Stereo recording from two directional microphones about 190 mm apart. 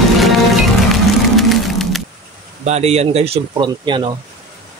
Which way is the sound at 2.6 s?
35° right (ahead or behind).